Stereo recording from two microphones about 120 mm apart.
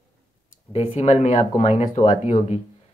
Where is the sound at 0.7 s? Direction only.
65° left (ahead or behind); by 2.6 s 90° left.